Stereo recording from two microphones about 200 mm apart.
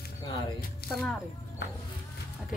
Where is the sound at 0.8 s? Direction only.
50° left (ahead or behind).